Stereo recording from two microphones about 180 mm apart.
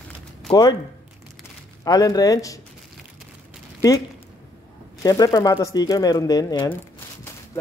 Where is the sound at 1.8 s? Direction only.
20° left (ahead or behind).